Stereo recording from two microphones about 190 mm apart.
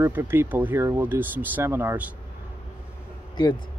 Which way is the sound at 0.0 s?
10° right (ahead or behind).